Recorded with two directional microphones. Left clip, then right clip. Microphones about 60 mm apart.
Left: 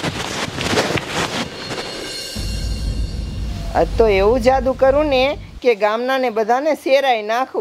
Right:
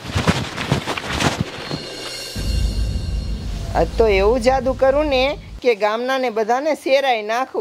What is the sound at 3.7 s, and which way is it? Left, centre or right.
Speech, left.